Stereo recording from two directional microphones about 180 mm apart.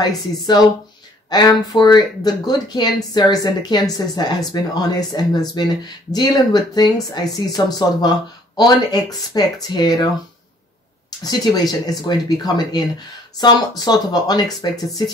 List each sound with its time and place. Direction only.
0.0 s speech: 25° left (ahead or behind)
11.1 s speech: 20° left (ahead or behind)